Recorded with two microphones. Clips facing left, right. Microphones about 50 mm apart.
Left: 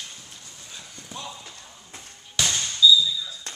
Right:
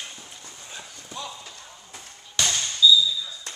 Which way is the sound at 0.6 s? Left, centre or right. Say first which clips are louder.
Right 3 dB; centre.